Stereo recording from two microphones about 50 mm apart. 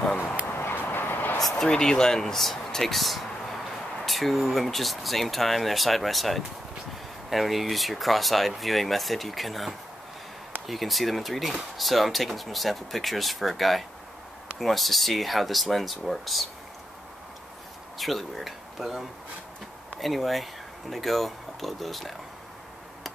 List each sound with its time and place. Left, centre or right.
0.5 s a sound: left
0.7 s vehicle: left
1.4 s speech: centre
17.9 s speech: centre